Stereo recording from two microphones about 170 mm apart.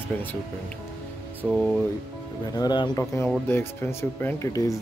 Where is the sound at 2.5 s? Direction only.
25° left (ahead or behind).